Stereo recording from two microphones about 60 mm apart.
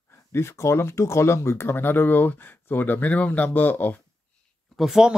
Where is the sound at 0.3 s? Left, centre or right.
Left.